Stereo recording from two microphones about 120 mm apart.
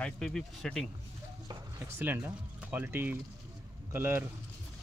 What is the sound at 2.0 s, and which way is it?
Speech, 15° right (ahead or behind).